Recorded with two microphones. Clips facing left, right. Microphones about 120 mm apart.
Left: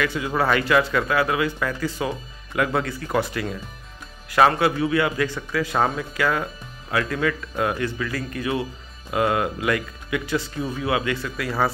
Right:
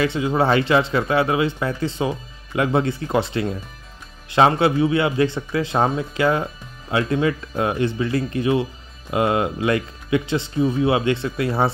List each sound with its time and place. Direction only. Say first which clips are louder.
0.0 s speech: right 4 dB; 25° right (ahead or behind)